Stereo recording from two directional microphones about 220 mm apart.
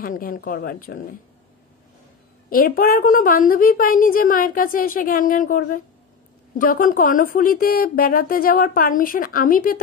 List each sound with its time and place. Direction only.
0.0 s a woman's voice: 40° left (ahead or behind)
2.5 s a woman's voice: 40° left (ahead or behind)